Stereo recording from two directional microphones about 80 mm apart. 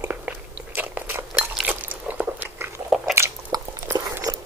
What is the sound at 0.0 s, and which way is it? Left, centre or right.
Biting, right.